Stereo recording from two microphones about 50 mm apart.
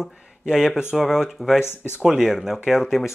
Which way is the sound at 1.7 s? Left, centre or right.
Left.